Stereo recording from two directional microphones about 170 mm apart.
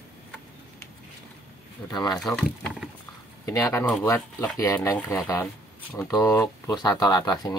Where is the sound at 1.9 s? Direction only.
25° left (ahead or behind).